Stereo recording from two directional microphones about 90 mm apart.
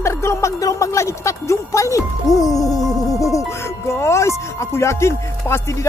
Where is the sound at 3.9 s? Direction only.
35° left (ahead or behind).